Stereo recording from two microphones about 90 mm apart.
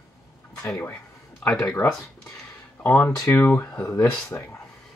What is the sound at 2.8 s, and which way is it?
Speech, 20° left (ahead or behind).